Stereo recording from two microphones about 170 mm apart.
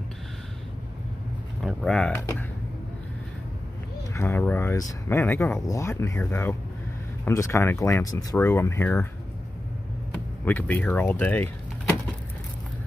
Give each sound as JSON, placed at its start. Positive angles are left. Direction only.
{"t": 1.6, "sound": "speech", "side_deg": 0}
{"t": 4.1, "sound": "speech", "side_deg": 15}
{"t": 10.4, "sound": "speech", "side_deg": 10}